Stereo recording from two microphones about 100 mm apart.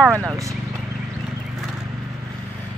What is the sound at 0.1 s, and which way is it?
Speech, 25° right (ahead or behind).